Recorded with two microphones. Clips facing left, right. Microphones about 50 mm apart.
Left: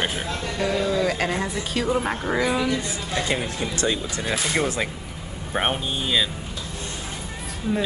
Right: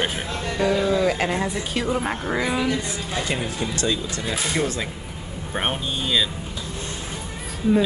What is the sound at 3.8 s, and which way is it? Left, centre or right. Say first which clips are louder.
Speech: left 1 dB; left.